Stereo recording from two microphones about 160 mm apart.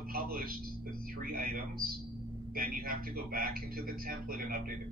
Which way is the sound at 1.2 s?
65° right (ahead or behind).